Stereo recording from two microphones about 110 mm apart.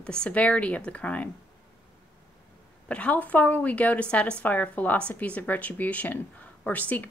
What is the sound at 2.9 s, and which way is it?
Speech, 10° left (ahead or behind).